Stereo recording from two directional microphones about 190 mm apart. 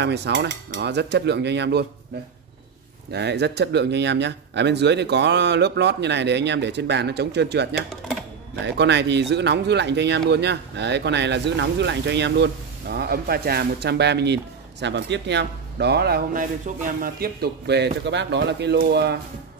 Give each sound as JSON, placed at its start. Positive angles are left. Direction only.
{"t": 0.0, "sound": "speech", "side_deg": -65}
{"t": 3.1, "sound": "speech", "side_deg": -60}
{"t": 16.6, "sound": "speech", "side_deg": -45}